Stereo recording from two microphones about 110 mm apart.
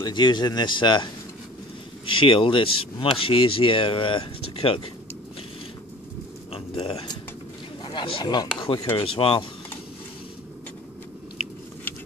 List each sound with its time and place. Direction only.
0.0 s speech: 40° left (ahead or behind); by 4.9 s 55° left (ahead or behind)
6.5 s a sound: 60° left (ahead or behind)
7.8 s speech: 50° left (ahead or behind)
8.9 s speech: 55° left (ahead or behind)